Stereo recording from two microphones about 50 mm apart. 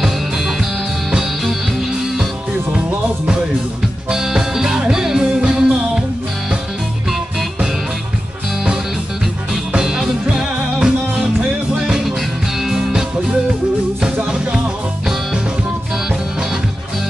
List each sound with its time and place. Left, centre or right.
0.0 s music: centre
4.1 s music: centre
9.7 s music: centre
12.0 s music: centre
14.2 s music: centre